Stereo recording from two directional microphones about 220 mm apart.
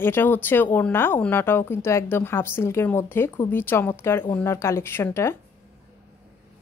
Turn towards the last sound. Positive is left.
turn(degrees=10)  # may be behind; listen again after turning